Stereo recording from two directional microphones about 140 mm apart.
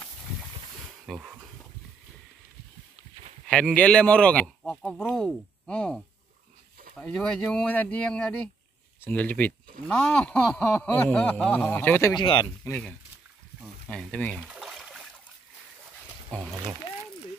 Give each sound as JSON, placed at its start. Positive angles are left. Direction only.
{"t": 1.0, "sound": "a sound", "side_deg": 0}
{"t": 3.4, "sound": "speech", "side_deg": 5}
{"t": 12.1, "sound": "speech", "side_deg": 35}
{"t": 13.8, "sound": "speech", "side_deg": 10}
{"t": 14.4, "sound": "a sound", "side_deg": -5}
{"t": 16.3, "sound": "speech", "side_deg": 10}